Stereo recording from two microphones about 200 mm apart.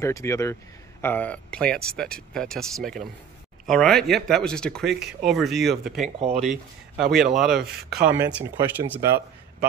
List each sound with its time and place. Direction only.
0.0 s speech: 15° left (ahead or behind)
6.1 s speech: 30° right (ahead or behind)
6.4 s speech: centre (ahead or behind)